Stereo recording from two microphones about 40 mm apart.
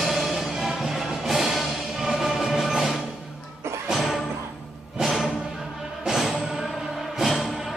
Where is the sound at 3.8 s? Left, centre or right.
Centre.